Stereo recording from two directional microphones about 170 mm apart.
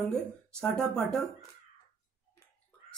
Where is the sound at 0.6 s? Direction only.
5° left (ahead or behind).